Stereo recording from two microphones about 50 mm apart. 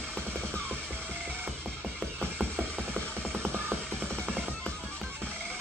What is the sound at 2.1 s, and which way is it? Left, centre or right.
Music, right.